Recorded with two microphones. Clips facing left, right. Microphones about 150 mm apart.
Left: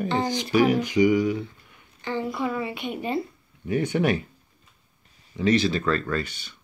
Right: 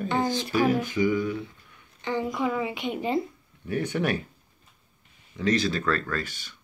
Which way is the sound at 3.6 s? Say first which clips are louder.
Left 4 dB; 10° left (ahead or behind).